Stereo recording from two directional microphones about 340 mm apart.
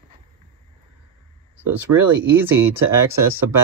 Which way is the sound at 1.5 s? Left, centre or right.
Centre.